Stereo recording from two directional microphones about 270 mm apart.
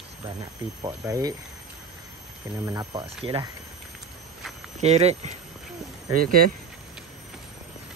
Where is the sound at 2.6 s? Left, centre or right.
Centre.